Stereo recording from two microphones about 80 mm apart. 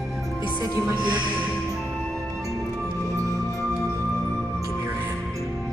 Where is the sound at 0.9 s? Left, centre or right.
Right.